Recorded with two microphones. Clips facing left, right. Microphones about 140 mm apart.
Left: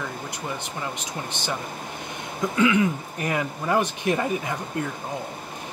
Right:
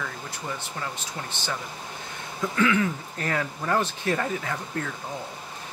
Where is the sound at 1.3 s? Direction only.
15° left (ahead or behind).